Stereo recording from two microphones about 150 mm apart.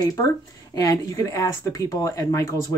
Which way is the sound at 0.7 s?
20° left (ahead or behind).